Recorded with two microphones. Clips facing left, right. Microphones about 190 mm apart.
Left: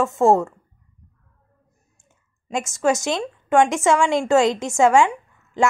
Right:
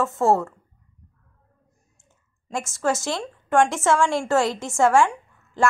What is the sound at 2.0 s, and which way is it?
Speech, 15° left (ahead or behind).